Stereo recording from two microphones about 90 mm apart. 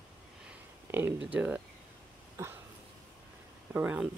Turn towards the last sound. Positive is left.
turn(degrees=-15)  # may be behind; listen again after turning